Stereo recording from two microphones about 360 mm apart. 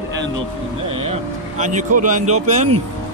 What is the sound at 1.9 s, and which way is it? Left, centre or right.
Speech, right.